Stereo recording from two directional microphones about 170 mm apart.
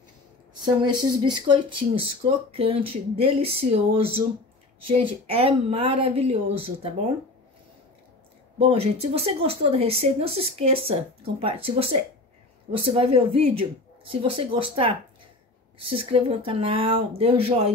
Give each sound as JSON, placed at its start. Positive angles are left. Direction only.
{"t": 0.6, "sound": "speech", "side_deg": -25}
{"t": 8.5, "sound": "speech", "side_deg": -35}